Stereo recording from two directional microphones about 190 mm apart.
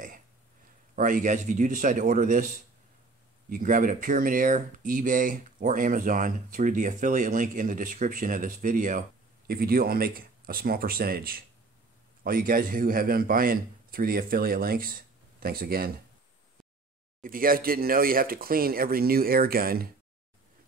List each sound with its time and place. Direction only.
0.9 s speech: 45° right (ahead or behind)
17.2 s speech: 50° right (ahead or behind)